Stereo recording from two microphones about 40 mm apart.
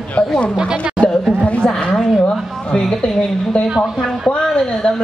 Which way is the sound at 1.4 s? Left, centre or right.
Left.